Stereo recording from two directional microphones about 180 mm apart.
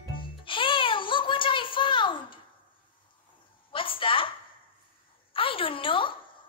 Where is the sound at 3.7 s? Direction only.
30° left (ahead or behind).